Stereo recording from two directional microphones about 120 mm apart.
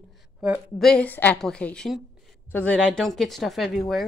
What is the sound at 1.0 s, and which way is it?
Speech, 15° left (ahead or behind).